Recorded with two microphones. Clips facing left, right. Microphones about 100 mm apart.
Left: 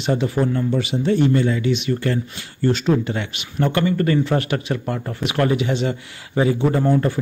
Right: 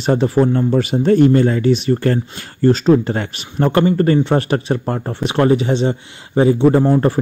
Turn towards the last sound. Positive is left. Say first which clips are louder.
# right 6 dB
turn(degrees=-35)  # may be behind; listen again after turning